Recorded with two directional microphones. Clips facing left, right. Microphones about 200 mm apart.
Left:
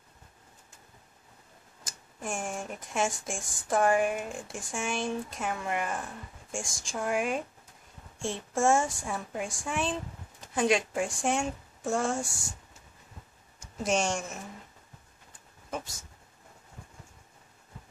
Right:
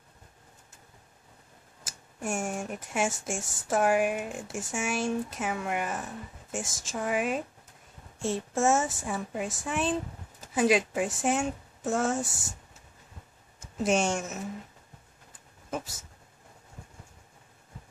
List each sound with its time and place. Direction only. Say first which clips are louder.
1.9 s speech: right 3 dB; 10° right (ahead or behind)
13.8 s speech: right 2 dB; 5° right (ahead or behind)